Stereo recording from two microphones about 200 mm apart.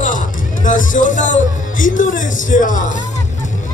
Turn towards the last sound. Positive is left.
turn(degrees=40)  # may be behind; listen again after turning